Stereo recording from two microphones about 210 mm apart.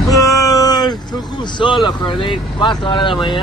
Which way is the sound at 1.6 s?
25° left (ahead or behind).